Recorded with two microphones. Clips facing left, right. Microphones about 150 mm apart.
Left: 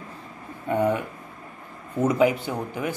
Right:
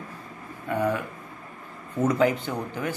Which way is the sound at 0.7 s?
20° left (ahead or behind).